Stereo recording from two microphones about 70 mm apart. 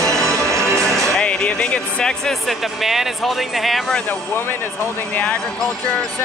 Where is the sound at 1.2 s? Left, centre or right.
Centre.